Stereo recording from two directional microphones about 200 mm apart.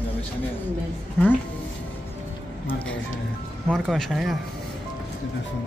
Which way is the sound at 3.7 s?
Centre (ahead or behind).